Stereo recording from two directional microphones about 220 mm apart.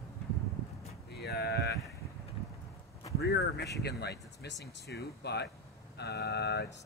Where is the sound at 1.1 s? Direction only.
45° left (ahead or behind).